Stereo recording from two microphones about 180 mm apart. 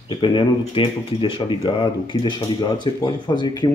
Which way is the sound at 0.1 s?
25° left (ahead or behind).